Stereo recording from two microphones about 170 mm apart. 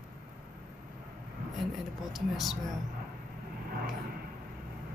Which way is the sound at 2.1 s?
Centre (ahead or behind).